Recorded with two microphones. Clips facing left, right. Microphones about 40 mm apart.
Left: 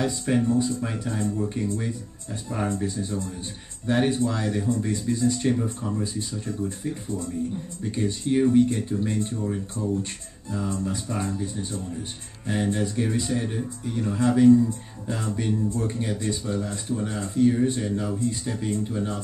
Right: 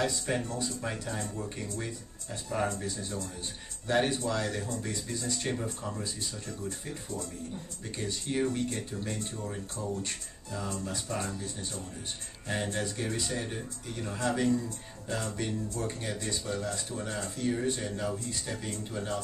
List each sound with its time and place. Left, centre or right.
0.0 s speech: centre
2.7 s speech: left
3.8 s speech: centre
5.5 s speech: centre
5.9 s speech: left
7.9 s speech: centre
9.4 s speech: centre
10.5 s speech: left
12.9 s speech: centre